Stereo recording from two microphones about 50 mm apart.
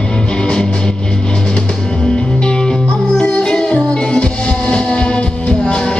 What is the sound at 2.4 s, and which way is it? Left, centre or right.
Music, centre.